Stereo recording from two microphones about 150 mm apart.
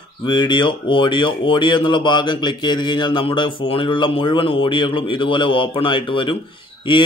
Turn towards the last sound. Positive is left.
turn(degrees=35)  # may be behind; listen again after turning